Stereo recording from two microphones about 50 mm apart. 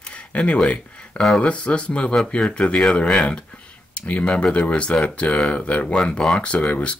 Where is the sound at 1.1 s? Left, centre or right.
Centre.